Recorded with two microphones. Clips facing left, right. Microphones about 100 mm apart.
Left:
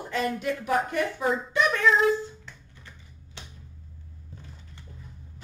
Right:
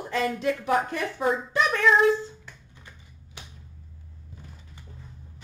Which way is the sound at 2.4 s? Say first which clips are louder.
Even; 15° right (ahead or behind).